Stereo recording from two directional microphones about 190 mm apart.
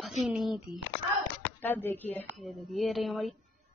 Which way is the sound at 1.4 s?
10° left (ahead or behind).